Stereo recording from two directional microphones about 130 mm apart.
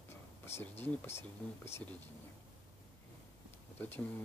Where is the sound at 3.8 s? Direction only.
15° left (ahead or behind).